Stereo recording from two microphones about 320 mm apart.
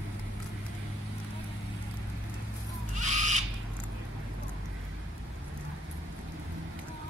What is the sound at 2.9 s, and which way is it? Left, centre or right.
Owl, right.